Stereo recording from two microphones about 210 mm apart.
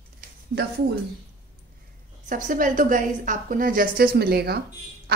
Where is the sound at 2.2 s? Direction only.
35° right (ahead or behind).